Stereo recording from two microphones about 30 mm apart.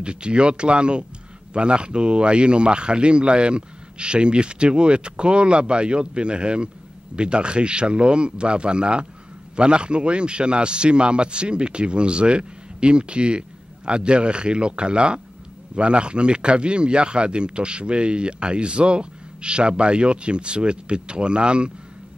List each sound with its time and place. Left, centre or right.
0.0 s a man's voice: right